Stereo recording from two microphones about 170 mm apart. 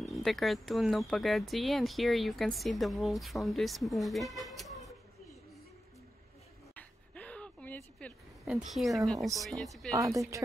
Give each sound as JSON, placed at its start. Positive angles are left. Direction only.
{"t": 0.0, "sound": "speech", "side_deg": 0}
{"t": 6.7, "sound": "a sound", "side_deg": 10}
{"t": 8.5, "sound": "speech", "side_deg": -5}
{"t": 9.9, "sound": "speech", "side_deg": -20}